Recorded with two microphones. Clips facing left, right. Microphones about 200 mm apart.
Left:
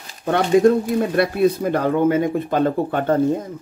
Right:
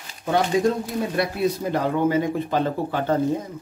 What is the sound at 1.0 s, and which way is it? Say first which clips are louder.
Speech: left 6 dB; 55° left (ahead or behind).